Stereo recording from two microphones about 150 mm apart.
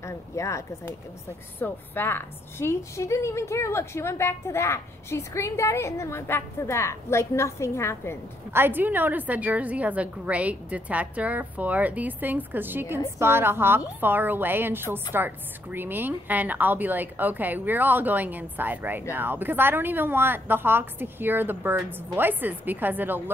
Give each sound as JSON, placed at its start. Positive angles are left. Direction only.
{"t": 0.0, "sound": "a woman's voice", "side_deg": 20}
{"t": 8.5, "sound": "a woman's voice", "side_deg": -15}